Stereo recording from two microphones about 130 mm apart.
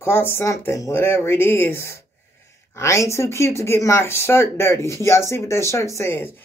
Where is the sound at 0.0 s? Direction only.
15° left (ahead or behind).